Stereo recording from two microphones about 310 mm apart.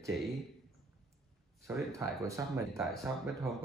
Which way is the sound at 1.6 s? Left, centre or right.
Centre.